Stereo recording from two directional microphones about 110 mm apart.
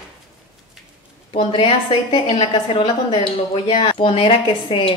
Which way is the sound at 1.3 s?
55° left (ahead or behind).